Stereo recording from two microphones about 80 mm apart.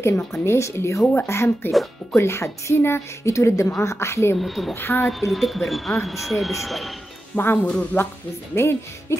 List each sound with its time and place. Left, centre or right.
0.3 s a woman's voice: left
4.4 s speech: centre
4.7 s speech: left
5.0 s speech: centre
7.5 s speech: centre
8.5 s a woman's voice: left